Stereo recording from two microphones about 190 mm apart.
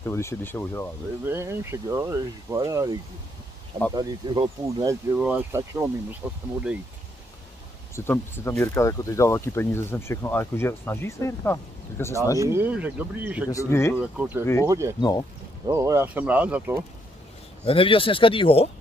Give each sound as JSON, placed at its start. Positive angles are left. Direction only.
{"t": 0.0, "sound": "speech", "side_deg": 15}
{"t": 1.2, "sound": "speech", "side_deg": -10}
{"t": 5.1, "sound": "speech", "side_deg": -5}
{"t": 7.9, "sound": "speech", "side_deg": 15}
{"t": 12.4, "sound": "speech", "side_deg": -15}
{"t": 13.5, "sound": "speech", "side_deg": 15}
{"t": 14.1, "sound": "speech", "side_deg": -5}
{"t": 14.4, "sound": "speech", "side_deg": 15}
{"t": 14.7, "sound": "speech", "side_deg": -15}
{"t": 15.0, "sound": "speech", "side_deg": 20}
{"t": 15.6, "sound": "speech", "side_deg": -15}
{"t": 17.6, "sound": "speech", "side_deg": 30}